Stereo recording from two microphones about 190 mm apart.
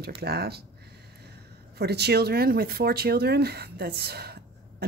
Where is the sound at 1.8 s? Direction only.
60° right (ahead or behind).